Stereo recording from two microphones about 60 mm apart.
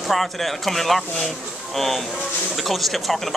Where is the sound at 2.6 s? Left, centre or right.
Centre.